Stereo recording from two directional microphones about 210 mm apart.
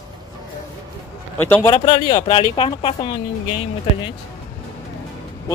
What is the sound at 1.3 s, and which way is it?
Speech, 10° left (ahead or behind).